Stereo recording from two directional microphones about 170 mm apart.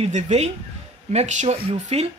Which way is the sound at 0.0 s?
40° right (ahead or behind).